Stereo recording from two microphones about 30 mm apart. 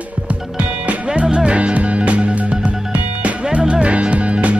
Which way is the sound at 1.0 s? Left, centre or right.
Right.